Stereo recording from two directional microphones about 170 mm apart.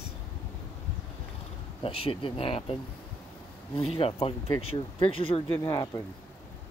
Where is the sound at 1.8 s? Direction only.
35° left (ahead or behind).